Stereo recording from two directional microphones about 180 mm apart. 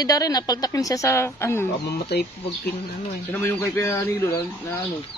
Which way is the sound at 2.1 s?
70° left (ahead or behind).